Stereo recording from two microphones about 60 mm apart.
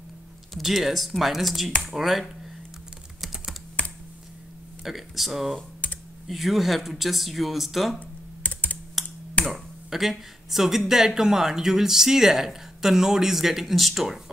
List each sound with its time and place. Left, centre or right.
0.6 s speech: centre
4.8 s speech: centre
5.8 s computer keyboard: left
6.2 s speech: centre
8.4 s computer keyboard: left
9.0 s a sound: centre
9.5 s speech: centre